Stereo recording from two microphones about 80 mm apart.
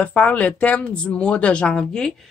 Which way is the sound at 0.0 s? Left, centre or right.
Centre.